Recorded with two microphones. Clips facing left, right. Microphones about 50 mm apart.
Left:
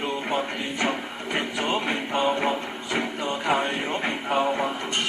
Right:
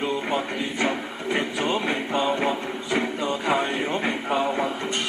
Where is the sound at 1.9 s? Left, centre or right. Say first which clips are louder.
Even; left.